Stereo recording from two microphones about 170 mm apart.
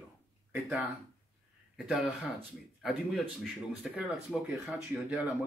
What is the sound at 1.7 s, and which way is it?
Speech, centre (ahead or behind).